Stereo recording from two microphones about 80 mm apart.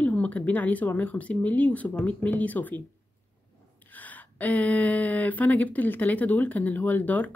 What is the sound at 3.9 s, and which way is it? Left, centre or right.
Speech, left.